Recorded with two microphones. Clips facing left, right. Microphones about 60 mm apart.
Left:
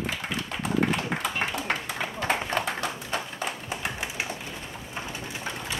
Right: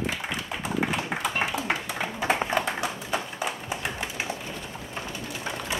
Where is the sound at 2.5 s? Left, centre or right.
Centre.